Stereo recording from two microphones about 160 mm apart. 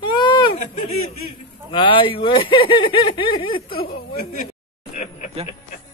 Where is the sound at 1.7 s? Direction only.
30° left (ahead or behind).